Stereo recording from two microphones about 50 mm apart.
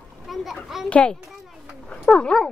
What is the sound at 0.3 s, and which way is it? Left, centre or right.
Children playing, centre.